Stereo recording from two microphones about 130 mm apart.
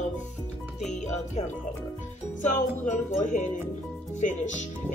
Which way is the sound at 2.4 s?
70° left (ahead or behind).